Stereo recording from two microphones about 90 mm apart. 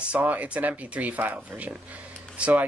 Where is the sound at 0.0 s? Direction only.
15° right (ahead or behind).